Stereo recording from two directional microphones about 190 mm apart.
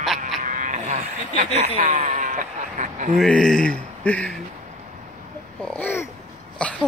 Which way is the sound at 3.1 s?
5° left (ahead or behind).